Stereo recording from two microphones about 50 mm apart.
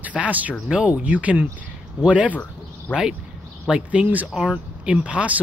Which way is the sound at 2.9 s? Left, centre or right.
Centre.